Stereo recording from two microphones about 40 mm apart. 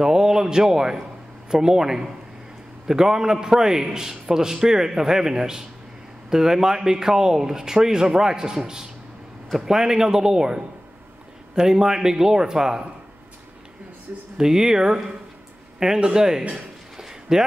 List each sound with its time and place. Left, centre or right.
0.0 s a man's voice: centre
14.3 s a man's voice: centre
16.9 s a sound: centre